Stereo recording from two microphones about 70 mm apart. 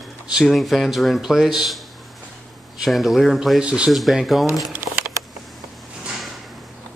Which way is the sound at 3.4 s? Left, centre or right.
Centre.